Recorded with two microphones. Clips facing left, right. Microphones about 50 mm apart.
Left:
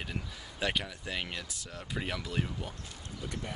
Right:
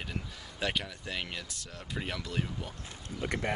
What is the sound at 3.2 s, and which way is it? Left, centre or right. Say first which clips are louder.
Speech: right 7 dB; right.